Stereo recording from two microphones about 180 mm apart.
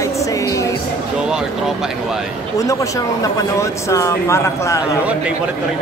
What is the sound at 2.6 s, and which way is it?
Speech, 20° left (ahead or behind).